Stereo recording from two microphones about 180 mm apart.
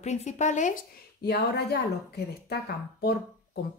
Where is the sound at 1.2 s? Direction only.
65° left (ahead or behind).